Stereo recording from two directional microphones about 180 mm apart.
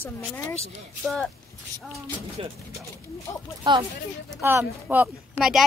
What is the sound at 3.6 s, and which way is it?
Speech, 25° right (ahead or behind).